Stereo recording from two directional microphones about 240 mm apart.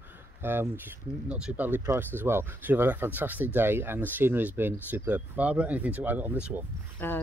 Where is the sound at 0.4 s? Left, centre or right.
Centre.